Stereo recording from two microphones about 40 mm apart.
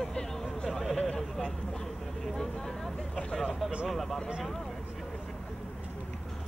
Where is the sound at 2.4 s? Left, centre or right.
Centre.